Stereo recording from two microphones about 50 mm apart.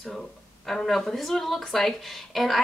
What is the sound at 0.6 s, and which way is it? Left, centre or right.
A woman's voice, centre.